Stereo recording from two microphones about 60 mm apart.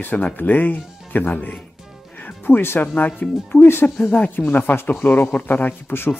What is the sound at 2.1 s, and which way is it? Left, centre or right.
Music, left.